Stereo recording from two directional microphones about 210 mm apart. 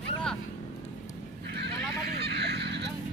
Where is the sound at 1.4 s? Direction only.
50° right (ahead or behind).